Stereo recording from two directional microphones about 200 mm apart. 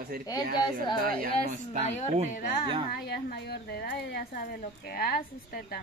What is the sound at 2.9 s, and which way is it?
Speech, 50° left (ahead or behind).